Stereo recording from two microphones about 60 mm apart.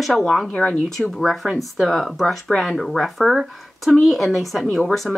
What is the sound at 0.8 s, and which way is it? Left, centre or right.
Speech, centre.